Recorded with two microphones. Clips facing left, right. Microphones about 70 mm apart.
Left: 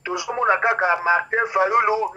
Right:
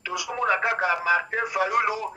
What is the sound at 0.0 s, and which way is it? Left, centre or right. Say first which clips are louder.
Speech: left 5 dB; left.